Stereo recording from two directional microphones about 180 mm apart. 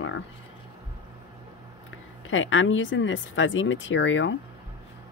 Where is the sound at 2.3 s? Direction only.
90° left.